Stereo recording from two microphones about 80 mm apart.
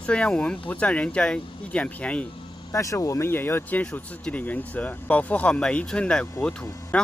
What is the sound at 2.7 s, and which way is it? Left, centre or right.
Speech, left.